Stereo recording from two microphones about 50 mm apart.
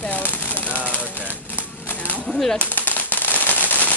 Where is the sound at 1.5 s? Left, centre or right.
Left.